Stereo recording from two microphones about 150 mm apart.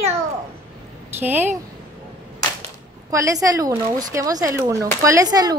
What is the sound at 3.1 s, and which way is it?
Speech, 20° right (ahead or behind).